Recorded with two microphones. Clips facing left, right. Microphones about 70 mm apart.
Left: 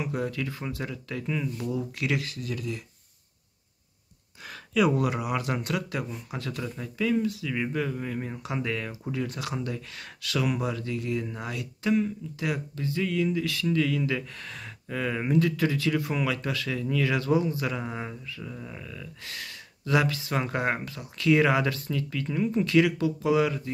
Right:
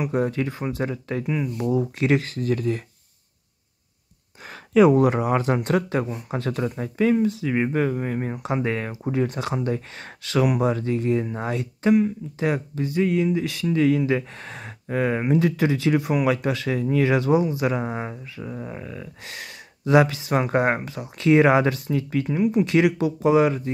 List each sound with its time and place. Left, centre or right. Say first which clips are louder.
0.0 s speech: right 7 dB; right
1.2 s speech: right 4 dB; right
4.5 s speech: right 8 dB; right